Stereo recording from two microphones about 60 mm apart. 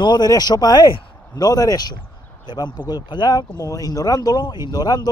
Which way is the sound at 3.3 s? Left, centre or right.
Left.